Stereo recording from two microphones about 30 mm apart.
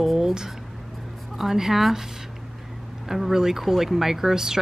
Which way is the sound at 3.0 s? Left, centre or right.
Centre.